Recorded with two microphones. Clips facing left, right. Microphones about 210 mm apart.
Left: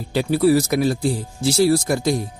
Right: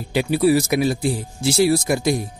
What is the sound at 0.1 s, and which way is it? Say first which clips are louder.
Speech: left 1 dB; 15° right (ahead or behind).